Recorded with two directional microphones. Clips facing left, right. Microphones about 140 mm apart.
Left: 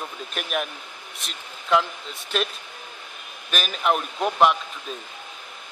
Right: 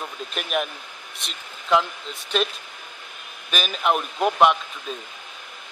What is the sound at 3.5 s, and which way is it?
Speech, centre (ahead or behind).